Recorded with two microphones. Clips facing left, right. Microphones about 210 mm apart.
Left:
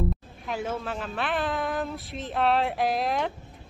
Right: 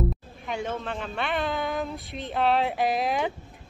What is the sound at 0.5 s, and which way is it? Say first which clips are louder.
Speech: even; 5° left (ahead or behind).